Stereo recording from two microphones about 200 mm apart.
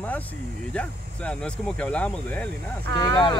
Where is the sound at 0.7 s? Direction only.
5° left (ahead or behind).